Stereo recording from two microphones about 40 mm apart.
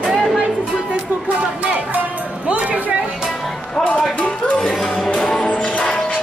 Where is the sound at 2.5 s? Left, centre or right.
Right.